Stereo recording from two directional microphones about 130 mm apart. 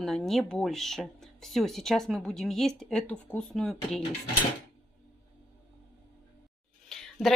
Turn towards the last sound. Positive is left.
turn(degrees=5)  # may be behind; listen again after turning